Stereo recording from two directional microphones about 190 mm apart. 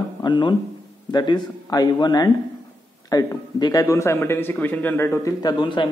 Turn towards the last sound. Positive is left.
turn(degrees=25)  # may be behind; listen again after turning